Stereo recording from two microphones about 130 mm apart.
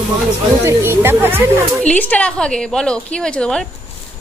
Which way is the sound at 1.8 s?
10° left (ahead or behind).